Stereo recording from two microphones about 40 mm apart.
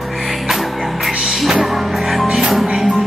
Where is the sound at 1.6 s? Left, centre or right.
Centre.